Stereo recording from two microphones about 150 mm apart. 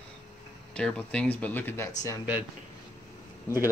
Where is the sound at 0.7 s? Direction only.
5° left (ahead or behind).